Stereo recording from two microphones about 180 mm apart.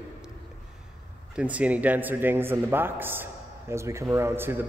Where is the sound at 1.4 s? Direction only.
10° right (ahead or behind).